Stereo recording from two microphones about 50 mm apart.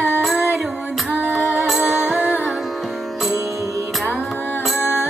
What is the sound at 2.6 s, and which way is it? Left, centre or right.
Music, centre.